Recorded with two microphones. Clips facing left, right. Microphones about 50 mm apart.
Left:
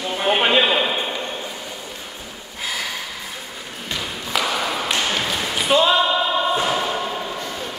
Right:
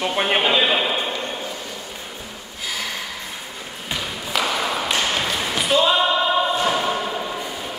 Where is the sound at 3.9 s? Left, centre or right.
Centre.